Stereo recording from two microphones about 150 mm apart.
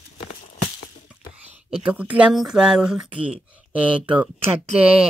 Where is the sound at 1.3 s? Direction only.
10° right (ahead or behind).